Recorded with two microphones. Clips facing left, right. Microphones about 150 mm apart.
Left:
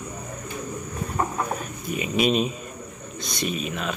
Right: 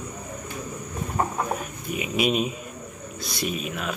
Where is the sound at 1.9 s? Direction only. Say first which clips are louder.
Left 2 dB; 5° right (ahead or behind).